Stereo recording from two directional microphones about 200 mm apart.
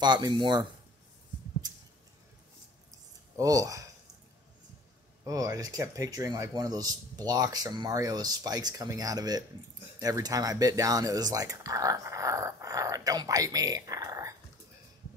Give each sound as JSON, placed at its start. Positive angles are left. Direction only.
{"t": 0.0, "sound": "speech", "side_deg": -20}
{"t": 2.9, "sound": "a sound", "side_deg": -15}
{"t": 5.2, "sound": "speech", "side_deg": -15}